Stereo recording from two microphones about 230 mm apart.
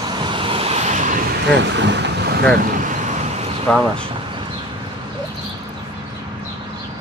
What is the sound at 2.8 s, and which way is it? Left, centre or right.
Vehicle, right.